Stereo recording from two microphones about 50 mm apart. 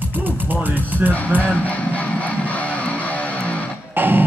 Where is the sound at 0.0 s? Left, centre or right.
Right.